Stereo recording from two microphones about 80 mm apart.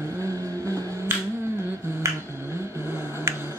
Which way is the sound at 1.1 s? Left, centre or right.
Right.